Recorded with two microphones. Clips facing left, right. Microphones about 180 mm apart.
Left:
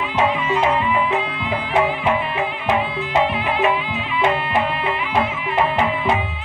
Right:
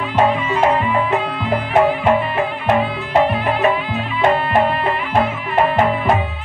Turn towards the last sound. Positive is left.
turn(degrees=-45)  # may be behind; listen again after turning